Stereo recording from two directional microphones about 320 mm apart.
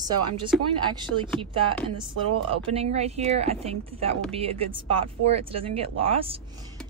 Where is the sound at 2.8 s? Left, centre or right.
Centre.